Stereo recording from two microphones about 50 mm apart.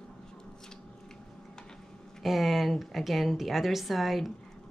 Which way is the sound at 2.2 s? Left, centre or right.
Centre.